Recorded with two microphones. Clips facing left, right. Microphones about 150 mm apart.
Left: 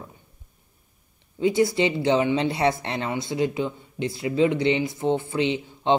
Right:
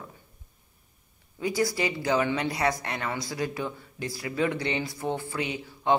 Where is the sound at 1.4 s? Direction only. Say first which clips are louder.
Left 6 dB; 25° left (ahead or behind).